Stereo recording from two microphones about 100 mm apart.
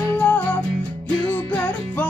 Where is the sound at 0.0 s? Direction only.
15° left (ahead or behind).